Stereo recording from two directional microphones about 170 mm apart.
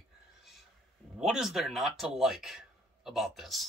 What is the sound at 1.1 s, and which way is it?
Speech, 5° right (ahead or behind).